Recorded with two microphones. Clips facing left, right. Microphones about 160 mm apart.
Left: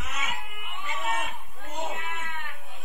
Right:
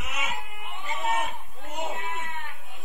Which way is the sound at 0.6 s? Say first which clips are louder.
Right 2 dB; 30° right (ahead or behind).